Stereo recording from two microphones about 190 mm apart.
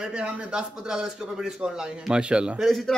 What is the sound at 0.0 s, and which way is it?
A man's voice, 5° right (ahead or behind).